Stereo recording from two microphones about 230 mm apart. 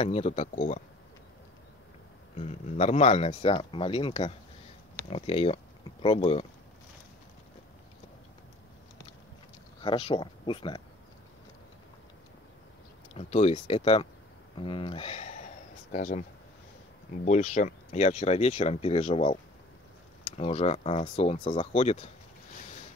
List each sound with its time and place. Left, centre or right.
0.0 s speech: left
2.3 s speech: left
9.8 s speech: left
13.1 s speech: left